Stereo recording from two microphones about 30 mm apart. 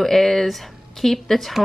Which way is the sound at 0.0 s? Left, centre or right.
Centre.